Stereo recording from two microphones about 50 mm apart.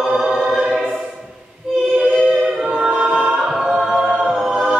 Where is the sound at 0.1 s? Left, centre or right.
Centre.